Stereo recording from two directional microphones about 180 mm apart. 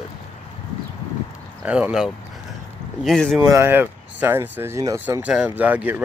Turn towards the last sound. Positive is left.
turn(degrees=-10)  # may be behind; listen again after turning